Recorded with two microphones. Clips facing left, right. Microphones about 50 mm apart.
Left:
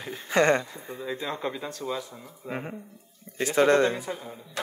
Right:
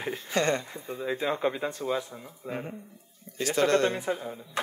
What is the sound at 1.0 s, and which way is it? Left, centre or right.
Speech, centre.